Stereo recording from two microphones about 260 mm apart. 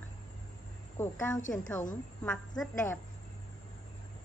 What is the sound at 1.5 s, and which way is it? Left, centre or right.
A woman's voice, centre.